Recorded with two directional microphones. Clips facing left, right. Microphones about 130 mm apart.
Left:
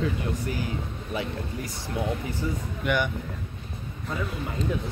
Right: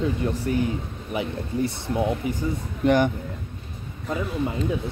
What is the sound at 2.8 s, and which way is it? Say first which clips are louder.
Speech: right 7 dB; 35° right (ahead or behind).